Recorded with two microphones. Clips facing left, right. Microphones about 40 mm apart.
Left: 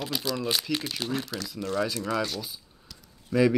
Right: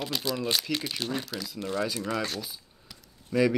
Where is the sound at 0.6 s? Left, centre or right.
Centre.